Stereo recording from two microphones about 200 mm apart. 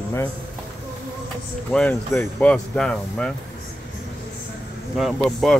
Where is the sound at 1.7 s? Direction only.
5° left (ahead or behind).